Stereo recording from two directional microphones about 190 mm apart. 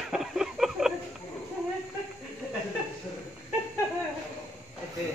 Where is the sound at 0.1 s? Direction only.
Centre (ahead or behind).